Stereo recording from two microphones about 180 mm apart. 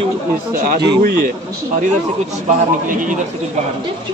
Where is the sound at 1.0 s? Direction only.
55° right (ahead or behind).